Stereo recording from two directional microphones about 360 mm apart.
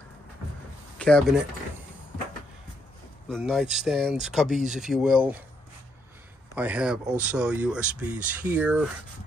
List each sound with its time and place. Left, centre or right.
0.9 s speech: centre
3.3 s speech: centre
6.5 s speech: centre